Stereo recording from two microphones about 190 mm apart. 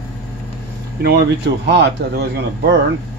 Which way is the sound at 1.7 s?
60° right (ahead or behind).